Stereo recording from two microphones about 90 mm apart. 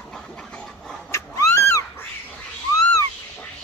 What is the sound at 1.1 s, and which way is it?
Cat, 35° left (ahead or behind).